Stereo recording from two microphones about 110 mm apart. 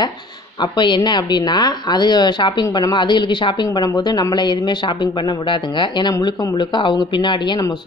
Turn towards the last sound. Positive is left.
turn(degrees=45)  # may be behind; listen again after turning